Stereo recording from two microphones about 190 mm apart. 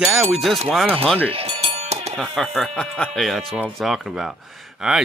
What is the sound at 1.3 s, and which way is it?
Music, 30° right (ahead or behind).